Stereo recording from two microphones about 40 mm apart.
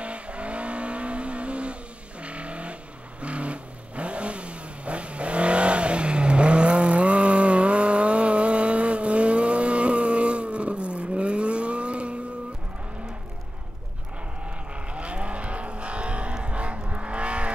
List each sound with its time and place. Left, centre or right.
0.0 s vehicle: right
14.4 s vehicle: right